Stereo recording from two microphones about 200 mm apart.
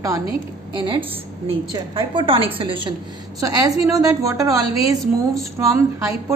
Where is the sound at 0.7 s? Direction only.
25° right (ahead or behind).